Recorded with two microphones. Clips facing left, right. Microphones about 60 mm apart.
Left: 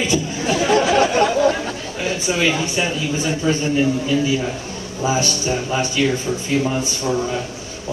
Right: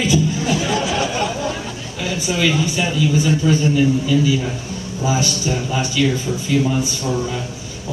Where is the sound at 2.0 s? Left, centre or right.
Left.